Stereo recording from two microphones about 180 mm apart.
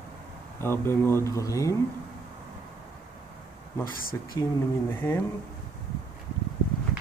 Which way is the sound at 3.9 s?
55° left (ahead or behind).